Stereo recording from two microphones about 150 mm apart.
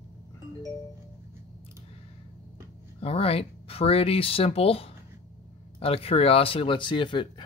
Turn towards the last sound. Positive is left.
turn(degrees=35)  # may be behind; listen again after turning